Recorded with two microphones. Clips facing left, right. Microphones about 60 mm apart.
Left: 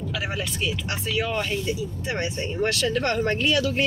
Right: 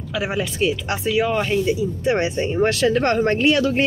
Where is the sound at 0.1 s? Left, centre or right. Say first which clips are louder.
Right 9 dB; centre.